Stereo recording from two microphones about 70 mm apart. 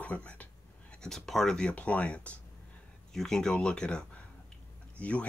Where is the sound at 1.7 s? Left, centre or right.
Left.